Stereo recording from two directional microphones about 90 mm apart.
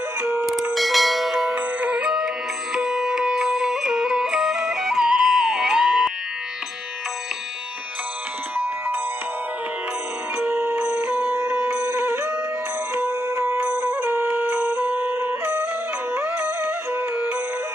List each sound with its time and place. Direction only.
0.2 s music: 20° right (ahead or behind)
0.7 s bell: centre (ahead or behind)
1.5 s music: 15° right (ahead or behind)
10.4 s music: 20° right (ahead or behind)